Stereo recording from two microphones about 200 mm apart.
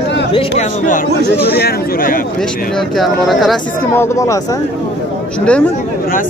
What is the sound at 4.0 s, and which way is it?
Speech, 15° left (ahead or behind).